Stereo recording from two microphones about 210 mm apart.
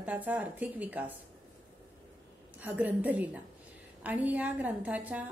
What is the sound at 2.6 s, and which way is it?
A woman's voice, 10° right (ahead or behind).